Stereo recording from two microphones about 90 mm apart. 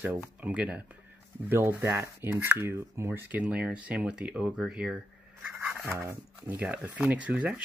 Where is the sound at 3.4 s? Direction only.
10° right (ahead or behind).